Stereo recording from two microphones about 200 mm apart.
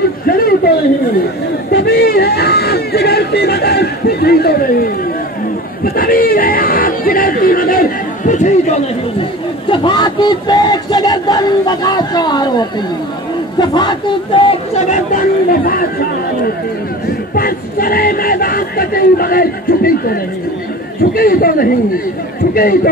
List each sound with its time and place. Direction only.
1.7 s a sound: 55° left (ahead or behind)
5.9 s music: 45° left (ahead or behind)
9.7 s a sound: 20° left (ahead or behind)
13.6 s speech: 20° left (ahead or behind)
15.1 s speech: 45° left (ahead or behind)
17.4 s speech: 45° left (ahead or behind)